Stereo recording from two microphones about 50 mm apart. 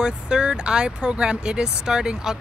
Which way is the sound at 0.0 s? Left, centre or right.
Centre.